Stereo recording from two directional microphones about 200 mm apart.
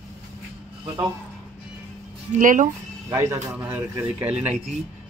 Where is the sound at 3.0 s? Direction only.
15° right (ahead or behind).